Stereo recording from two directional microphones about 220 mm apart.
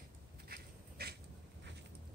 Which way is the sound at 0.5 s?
45° right (ahead or behind).